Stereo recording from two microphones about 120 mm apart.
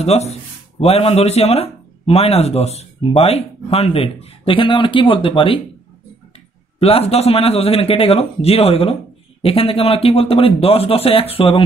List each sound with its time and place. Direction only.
0.0 s speech: 60° left (ahead or behind); by 5.6 s 45° left (ahead or behind)
6.8 s a man's voice: 55° left (ahead or behind)